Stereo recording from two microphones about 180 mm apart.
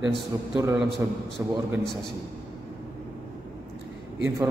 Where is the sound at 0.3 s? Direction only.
20° right (ahead or behind).